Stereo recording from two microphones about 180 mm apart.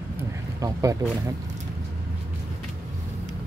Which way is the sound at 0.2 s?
20° right (ahead or behind).